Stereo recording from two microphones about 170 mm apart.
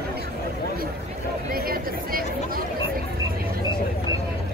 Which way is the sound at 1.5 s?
60° right (ahead or behind).